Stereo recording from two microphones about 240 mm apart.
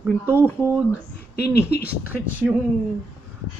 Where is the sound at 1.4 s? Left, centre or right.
Left.